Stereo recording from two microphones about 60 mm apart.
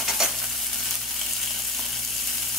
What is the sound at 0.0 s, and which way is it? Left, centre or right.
Stir, centre.